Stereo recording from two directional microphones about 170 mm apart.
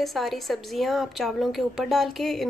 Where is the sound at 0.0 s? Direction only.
Centre (ahead or behind).